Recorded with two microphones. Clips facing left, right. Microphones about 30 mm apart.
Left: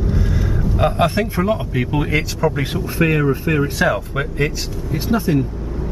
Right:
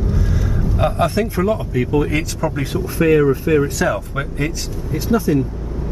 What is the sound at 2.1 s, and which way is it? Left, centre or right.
Speech, centre.